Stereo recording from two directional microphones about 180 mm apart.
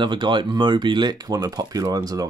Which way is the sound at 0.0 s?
25° right (ahead or behind).